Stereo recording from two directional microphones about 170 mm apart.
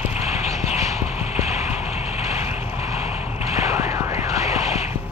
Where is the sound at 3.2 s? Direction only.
15° right (ahead or behind).